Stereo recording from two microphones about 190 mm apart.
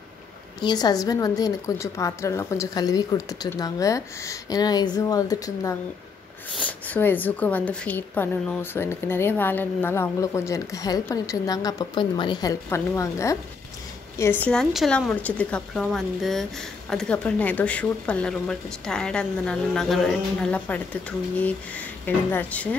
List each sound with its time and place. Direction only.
0.6 s a woman's voice: 20° left (ahead or behind)